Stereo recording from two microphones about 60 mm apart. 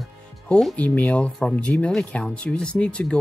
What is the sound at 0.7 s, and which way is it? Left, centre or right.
Speech, left.